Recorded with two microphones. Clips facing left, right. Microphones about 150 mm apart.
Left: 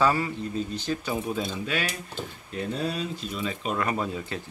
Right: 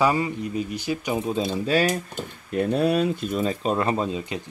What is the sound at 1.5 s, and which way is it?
Speech, 35° right (ahead or behind).